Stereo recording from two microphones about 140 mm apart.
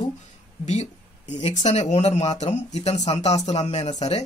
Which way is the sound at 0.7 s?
55° left (ahead or behind).